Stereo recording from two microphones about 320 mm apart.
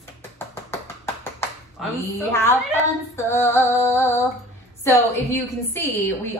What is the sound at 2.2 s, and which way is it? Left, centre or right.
Music, centre.